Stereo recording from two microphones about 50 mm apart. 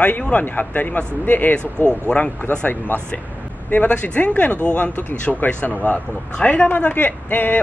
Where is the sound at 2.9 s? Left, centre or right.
Left.